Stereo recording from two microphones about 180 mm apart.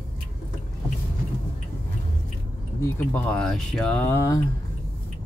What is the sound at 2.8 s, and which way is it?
Speech, 10° left (ahead or behind).